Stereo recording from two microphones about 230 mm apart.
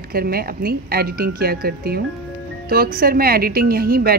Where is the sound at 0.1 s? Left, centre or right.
Right.